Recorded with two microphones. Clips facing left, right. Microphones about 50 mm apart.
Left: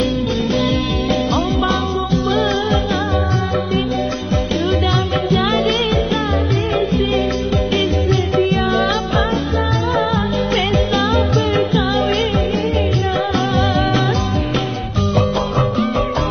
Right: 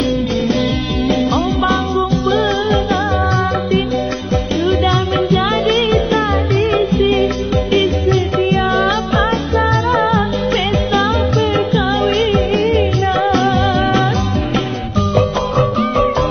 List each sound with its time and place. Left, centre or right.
2.2 s music: centre
4.9 s music: centre
6.7 s music: centre
12.5 s music: right
13.0 s music: centre
13.9 s music: right
15.0 s music: centre